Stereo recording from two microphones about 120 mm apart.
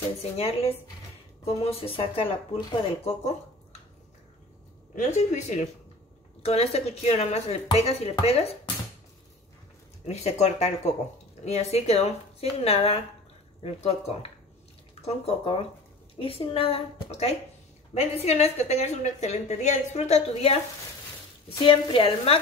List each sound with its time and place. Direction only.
0.2 s a woman's voice: 55° left (ahead or behind)
4.9 s speech: 75° left (ahead or behind)
6.4 s a woman's voice: 55° left (ahead or behind)
10.0 s a woman's voice: 65° left (ahead or behind)
21.5 s speech: 45° left (ahead or behind)